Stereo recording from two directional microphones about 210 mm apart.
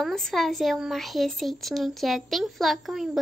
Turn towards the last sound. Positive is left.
turn(degrees=0)  # may be behind; listen again after turning